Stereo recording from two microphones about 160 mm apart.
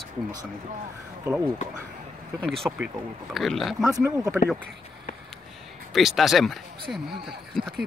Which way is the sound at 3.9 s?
20° right (ahead or behind).